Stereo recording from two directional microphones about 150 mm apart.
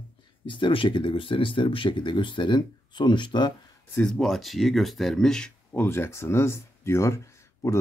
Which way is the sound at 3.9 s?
5° left (ahead or behind).